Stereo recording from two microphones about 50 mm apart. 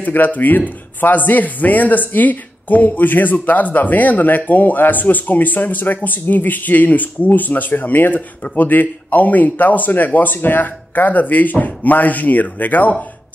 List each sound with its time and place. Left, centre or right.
0.0 s speech: left